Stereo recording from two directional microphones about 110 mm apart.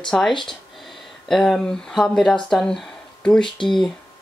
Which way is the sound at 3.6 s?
45° left (ahead or behind).